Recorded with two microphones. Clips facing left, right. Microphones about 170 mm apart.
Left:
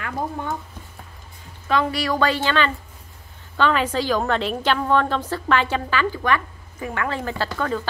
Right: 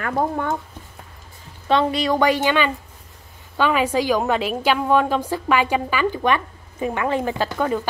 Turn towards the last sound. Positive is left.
turn(degrees=-15)  # may be behind; listen again after turning